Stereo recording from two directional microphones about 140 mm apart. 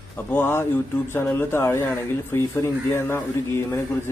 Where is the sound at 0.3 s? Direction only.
15° left (ahead or behind).